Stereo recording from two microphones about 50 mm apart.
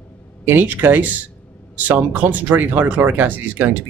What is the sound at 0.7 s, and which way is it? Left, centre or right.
Speech, right.